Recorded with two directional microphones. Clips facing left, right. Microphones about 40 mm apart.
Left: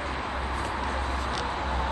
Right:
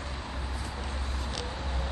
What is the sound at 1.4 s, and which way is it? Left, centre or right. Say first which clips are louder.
Vehicle: left 8 dB; left.